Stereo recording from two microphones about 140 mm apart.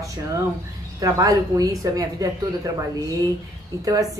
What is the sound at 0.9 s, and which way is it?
A woman's voice, 25° right (ahead or behind).